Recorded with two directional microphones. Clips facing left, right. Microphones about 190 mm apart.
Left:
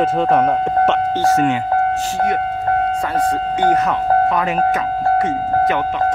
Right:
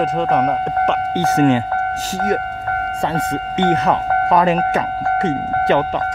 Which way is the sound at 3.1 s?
25° right (ahead or behind).